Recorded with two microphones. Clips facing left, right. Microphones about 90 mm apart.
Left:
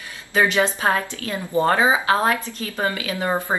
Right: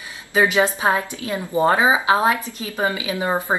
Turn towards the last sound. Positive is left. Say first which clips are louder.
# right 1 dB
turn(degrees=-15)  # may be behind; listen again after turning